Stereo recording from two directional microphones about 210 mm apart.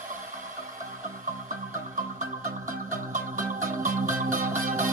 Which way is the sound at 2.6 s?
40° right (ahead or behind).